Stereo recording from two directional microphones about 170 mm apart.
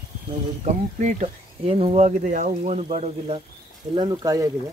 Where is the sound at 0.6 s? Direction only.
40° right (ahead or behind).